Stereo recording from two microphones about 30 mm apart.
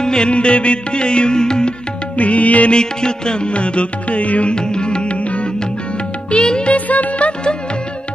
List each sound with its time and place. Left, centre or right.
0.0 s music: left
2.1 s music: left
2.7 s music: left
4.2 s music: left
4.5 s music: left
6.3 s music: left
6.7 s music: left
7.2 s music: left